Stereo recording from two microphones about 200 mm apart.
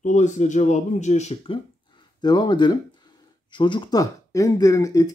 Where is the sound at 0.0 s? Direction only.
35° left (ahead or behind).